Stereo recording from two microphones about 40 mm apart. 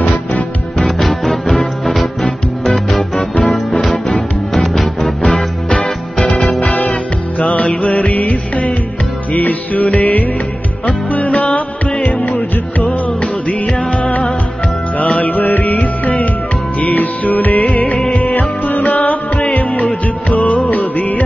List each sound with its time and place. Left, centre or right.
0.7 s music: centre
6.6 s music: left
17.9 s music: left
18.2 s music: left
20.5 s music: left